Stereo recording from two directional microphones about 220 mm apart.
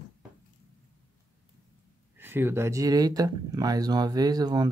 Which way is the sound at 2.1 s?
10° right (ahead or behind).